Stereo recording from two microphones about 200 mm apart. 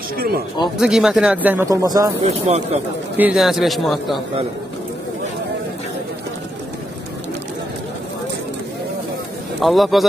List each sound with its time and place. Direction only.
0.7 s speech: 5° right (ahead or behind)
2.2 s speech: 35° right (ahead or behind)
3.2 s a man's voice: 5° right (ahead or behind)
9.6 s a man's voice: centre (ahead or behind)